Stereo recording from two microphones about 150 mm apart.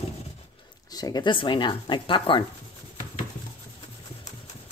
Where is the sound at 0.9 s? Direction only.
25° left (ahead or behind).